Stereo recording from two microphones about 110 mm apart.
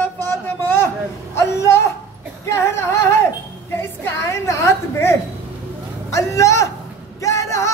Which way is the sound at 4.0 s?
25° left (ahead or behind).